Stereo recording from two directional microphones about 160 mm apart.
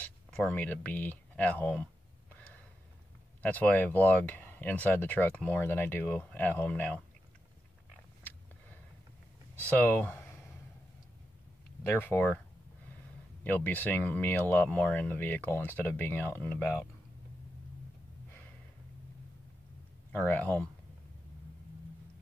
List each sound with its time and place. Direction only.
0.0 s speech: 5° left (ahead or behind)
2.3 s gasp: 10° left (ahead or behind)
3.4 s speech: 10° left (ahead or behind)
9.7 s speech: 10° left (ahead or behind)
11.8 s speech: 15° left (ahead or behind)
13.4 s speech: 10° left (ahead or behind)
20.1 s speech: 10° left (ahead or behind)